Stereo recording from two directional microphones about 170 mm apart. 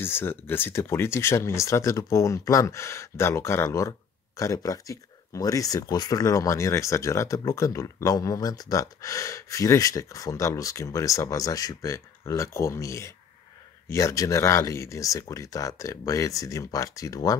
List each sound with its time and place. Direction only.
0.0 s speech: 15° left (ahead or behind)